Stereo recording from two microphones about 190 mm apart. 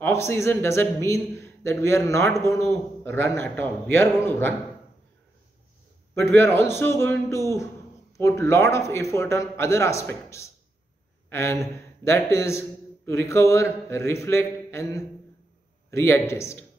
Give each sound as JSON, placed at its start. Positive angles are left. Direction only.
{"t": 0.0, "sound": "a man's voice", "side_deg": 15}
{"t": 6.1, "sound": "a man's voice", "side_deg": 15}